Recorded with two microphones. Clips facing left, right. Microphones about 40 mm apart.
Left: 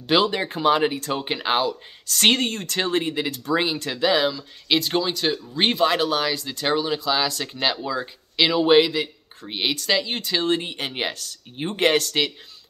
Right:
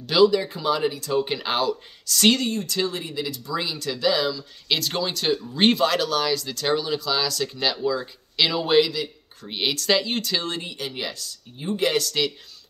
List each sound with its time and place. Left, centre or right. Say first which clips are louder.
0.0 s speech: right 2 dB; left
1.2 s speech: left 2 dB; left
2.0 s speech: even; left
2.4 s speech: even; left
3.6 s speech: left 2 dB; left
4.6 s speech: left 3 dB; centre
5.9 s speech: left 1 dB; left
9.5 s speech: right 1 dB; centre
10.4 s speech: left 6 dB; left